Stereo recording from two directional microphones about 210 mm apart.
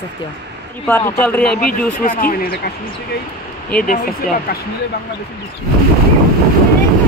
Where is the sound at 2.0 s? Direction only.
45° left (ahead or behind).